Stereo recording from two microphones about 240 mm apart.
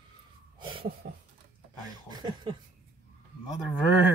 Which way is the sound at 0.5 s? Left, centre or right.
Centre.